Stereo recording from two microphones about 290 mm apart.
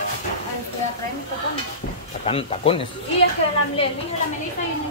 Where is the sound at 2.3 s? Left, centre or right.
Centre.